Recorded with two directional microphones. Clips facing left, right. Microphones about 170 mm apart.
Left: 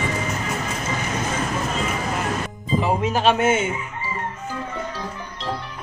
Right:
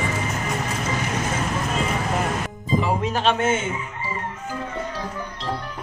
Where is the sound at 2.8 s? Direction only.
5° left (ahead or behind).